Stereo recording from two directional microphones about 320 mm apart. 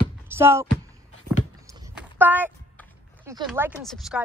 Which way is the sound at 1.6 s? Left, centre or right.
Centre.